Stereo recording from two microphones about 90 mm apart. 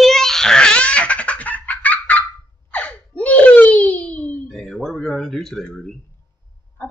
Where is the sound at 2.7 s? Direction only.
15° left (ahead or behind).